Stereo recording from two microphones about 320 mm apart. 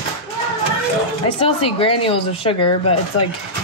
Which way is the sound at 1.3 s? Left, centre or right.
Centre.